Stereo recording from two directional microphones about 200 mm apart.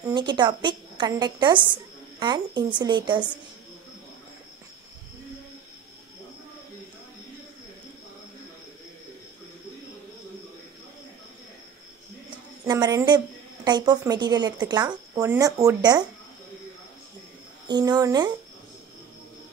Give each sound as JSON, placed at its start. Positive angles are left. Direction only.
{"t": 0.1, "sound": "speech", "side_deg": -20}
{"t": 12.6, "sound": "a sound", "side_deg": -20}
{"t": 13.7, "sound": "speech", "side_deg": -20}
{"t": 17.6, "sound": "speech", "side_deg": -20}